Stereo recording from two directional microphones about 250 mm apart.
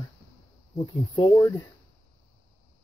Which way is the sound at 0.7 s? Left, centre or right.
Centre.